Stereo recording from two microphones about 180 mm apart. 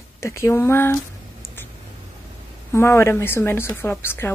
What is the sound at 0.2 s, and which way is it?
Speech, 15° left (ahead or behind).